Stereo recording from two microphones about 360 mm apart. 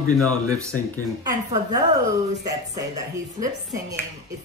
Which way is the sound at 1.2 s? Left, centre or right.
Centre.